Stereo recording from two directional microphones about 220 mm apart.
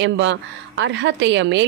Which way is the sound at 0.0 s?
55° right (ahead or behind).